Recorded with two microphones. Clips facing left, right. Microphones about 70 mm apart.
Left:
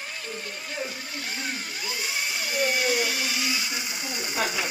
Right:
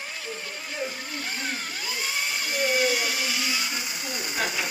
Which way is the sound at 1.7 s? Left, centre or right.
Centre.